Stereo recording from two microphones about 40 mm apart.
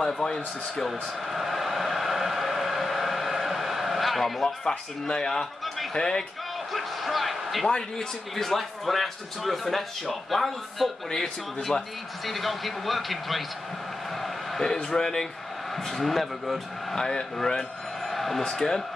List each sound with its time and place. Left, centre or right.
0.0 s speech: centre
0.8 s a sound: centre
4.6 s speech: centre
6.7 s a man's voice: centre
7.6 s speech: centre
8.5 s a man's voice: centre
12.3 s a man's voice: centre
14.1 s a sound: centre
14.9 s speech: centre
18.1 s a sound: centre
18.5 s speech: centre